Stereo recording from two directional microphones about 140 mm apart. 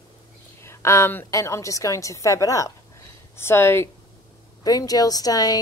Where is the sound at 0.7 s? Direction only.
20° left (ahead or behind).